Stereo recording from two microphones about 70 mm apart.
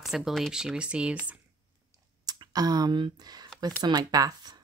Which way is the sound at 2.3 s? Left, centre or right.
Right.